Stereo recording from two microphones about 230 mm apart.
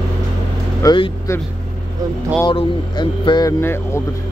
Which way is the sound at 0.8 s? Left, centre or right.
Centre.